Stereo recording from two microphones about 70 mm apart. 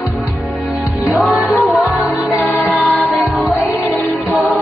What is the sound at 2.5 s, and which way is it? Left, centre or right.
Music, left.